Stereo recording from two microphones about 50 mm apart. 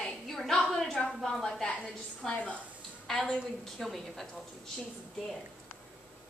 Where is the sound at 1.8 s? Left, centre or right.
Centre.